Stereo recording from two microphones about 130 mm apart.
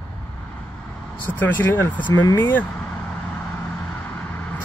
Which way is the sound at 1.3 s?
15° left (ahead or behind).